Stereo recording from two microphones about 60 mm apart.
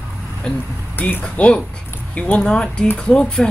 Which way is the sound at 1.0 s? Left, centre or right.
Left.